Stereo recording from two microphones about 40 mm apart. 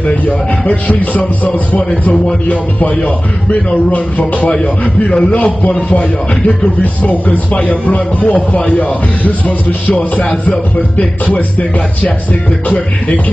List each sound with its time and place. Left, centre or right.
0.7 s speech: left
5.6 s speech: left
12.6 s speech: left